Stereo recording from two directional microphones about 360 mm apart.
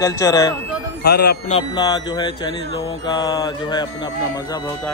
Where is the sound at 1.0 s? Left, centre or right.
Left.